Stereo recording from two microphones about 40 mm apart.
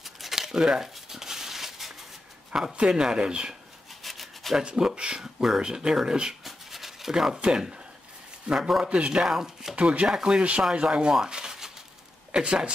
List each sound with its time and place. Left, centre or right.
0.0 s a sound: centre
2.5 s speech: centre
4.0 s rub: centre
4.6 s speech: right
6.4 s a sound: centre
7.3 s speech: right
8.5 s speech: centre
8.8 s speech: right
9.3 s speech: centre
9.8 s speech: right
10.0 s speech: centre